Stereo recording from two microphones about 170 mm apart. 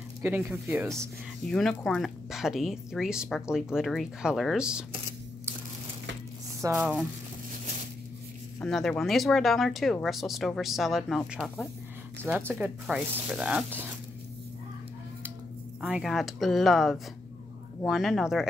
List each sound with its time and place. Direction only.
0.2 s speech: 15° right (ahead or behind)
1.5 s speech: 5° left (ahead or behind)
6.6 s speech: 20° right (ahead or behind)
8.5 s speech: 5° left (ahead or behind)
15.8 s speech: centre (ahead or behind)